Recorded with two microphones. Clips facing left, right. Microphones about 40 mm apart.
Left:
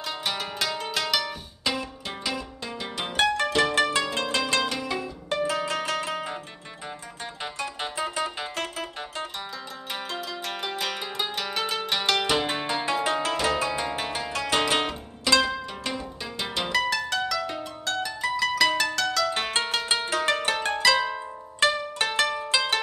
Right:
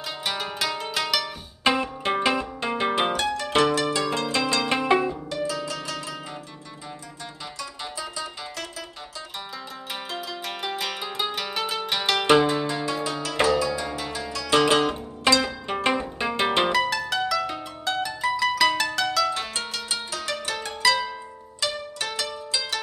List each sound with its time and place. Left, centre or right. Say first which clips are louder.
0.2 s music: right 3 dB; centre
1.6 s music: right 7 dB; right
3.2 s music: left 3 dB; left
3.4 s music: right 2 dB; right
3.7 s music: even; left
4.6 s music: right 8 dB; right
5.3 s zither: left 2 dB; left
7.8 s music: left 5 dB; left
10.1 s zither: even; centre
12.4 s music: right 2 dB; left
15.3 s zither: right 1 dB; right
15.7 s music: right 8 dB; right
16.7 s harp: right 1 dB; centre
19.3 s music: left 4 dB; left